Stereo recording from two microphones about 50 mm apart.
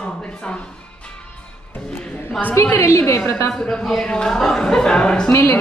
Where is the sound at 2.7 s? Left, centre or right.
Left.